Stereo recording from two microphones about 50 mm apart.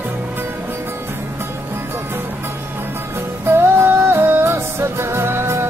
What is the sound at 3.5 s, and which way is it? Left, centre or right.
Music, right.